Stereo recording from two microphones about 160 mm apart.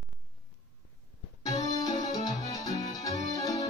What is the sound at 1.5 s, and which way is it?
Music, 25° left (ahead or behind).